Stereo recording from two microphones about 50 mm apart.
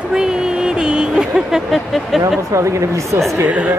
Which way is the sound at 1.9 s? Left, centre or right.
Centre.